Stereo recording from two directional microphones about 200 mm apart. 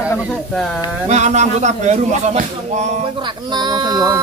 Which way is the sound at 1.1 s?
35° right (ahead or behind).